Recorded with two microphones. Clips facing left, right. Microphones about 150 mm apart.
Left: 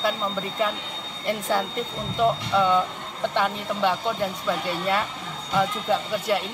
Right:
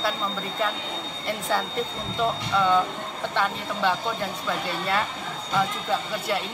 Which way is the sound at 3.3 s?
15° left (ahead or behind).